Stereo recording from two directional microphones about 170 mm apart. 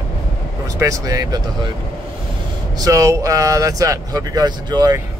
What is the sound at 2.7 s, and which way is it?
Speech, 20° right (ahead or behind).